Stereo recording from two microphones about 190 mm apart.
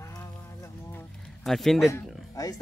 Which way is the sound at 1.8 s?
15° left (ahead or behind).